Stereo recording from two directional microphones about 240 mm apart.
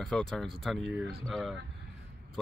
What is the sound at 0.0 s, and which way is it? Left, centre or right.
A man's voice, centre.